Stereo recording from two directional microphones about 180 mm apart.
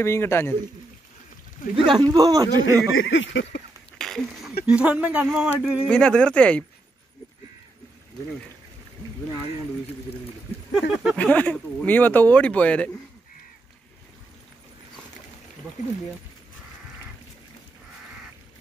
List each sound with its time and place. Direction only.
0.0 s speech: 15° left (ahead or behind)
2.0 s a man's voice: 20° right (ahead or behind)
2.9 s a sound: 90° left
4.0 s a sound: centre (ahead or behind)
4.6 s speech: 5° right (ahead or behind)
5.9 s speech: 5° left (ahead or behind)
10.7 s speech: 5° right (ahead or behind)
11.1 s speech: 10° left (ahead or behind)